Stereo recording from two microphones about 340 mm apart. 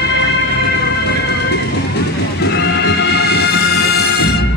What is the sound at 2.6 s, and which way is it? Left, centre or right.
Music, left.